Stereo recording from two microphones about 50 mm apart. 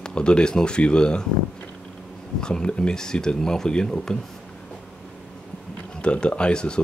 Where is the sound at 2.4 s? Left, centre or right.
Centre.